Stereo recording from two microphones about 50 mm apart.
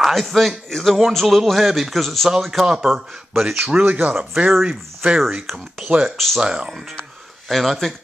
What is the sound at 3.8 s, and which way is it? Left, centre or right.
Speech, right.